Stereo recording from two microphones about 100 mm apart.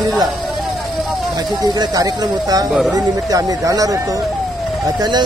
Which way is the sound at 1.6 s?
40° right (ahead or behind).